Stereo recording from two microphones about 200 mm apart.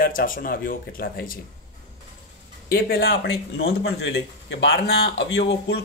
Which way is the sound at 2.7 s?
50° left (ahead or behind).